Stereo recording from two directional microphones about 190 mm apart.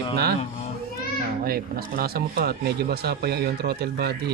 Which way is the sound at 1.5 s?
50° right (ahead or behind).